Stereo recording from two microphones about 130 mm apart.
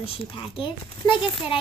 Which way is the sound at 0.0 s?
45° left (ahead or behind).